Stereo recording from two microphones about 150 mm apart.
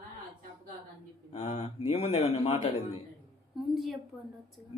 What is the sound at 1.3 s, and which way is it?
A man's voice, 45° left (ahead or behind).